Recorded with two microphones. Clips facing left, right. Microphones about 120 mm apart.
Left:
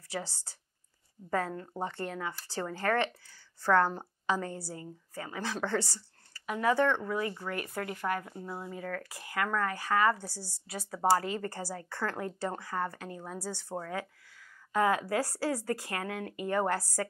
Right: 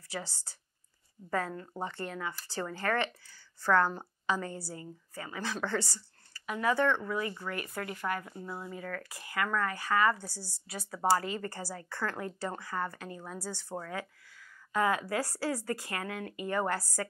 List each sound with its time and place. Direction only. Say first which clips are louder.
0.2 s speech: left 2 dB; 30° left (ahead or behind)
2.0 s speech: left 1 dB; 40° left (ahead or behind)
10.1 s speech: left 1 dB; 30° left (ahead or behind)
14.7 s speech: left 2 dB; 45° left (ahead or behind)